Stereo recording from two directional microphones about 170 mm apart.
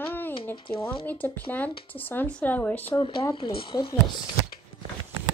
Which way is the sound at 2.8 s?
30° left (ahead or behind).